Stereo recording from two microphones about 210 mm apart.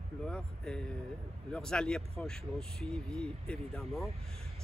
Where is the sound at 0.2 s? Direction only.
5° left (ahead or behind).